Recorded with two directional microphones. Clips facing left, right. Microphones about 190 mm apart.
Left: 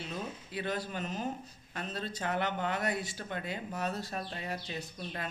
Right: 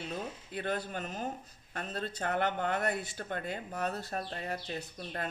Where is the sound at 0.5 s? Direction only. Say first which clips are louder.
Right 1 dB; 50° right (ahead or behind).